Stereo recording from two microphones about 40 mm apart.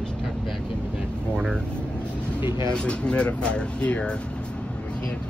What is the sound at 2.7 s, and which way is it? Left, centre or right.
Speech, left.